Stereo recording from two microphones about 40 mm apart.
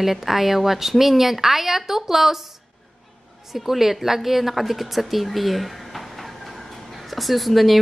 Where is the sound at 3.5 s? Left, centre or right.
Centre.